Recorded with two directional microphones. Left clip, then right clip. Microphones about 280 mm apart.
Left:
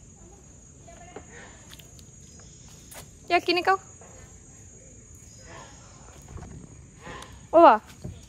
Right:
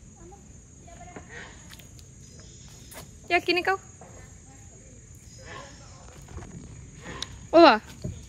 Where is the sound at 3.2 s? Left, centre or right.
Centre.